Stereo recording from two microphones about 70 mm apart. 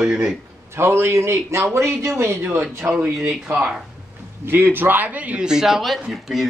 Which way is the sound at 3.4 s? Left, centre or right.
Right.